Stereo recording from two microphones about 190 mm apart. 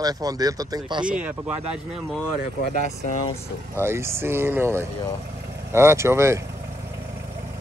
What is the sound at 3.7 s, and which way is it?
Speech, 15° right (ahead or behind).